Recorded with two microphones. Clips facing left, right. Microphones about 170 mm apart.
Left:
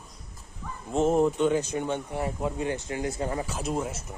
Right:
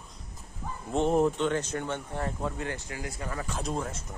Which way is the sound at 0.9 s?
Centre (ahead or behind).